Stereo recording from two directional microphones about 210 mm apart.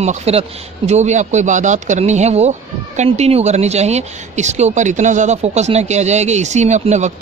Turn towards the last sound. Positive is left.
turn(degrees=-35)  # may be behind; listen again after turning